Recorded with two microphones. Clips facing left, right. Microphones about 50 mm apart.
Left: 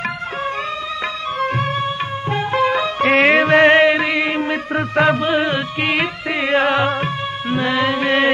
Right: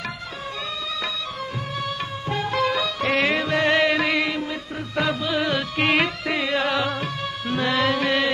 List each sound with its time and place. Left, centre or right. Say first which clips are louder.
1.8 s music: left 7 dB; left
3.8 s music: left 5 dB; left
4.3 s music: left 8 dB; left
5.8 s music: right 1 dB; centre
6.4 s music: left 8 dB; left
7.5 s music: left 3 dB; left